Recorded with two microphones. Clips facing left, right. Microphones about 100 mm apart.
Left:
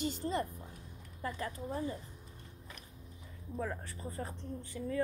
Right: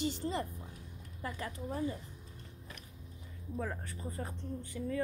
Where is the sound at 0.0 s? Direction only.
50° left (ahead or behind).